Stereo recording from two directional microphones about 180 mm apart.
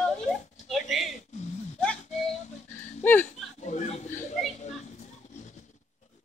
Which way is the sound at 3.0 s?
10° left (ahead or behind).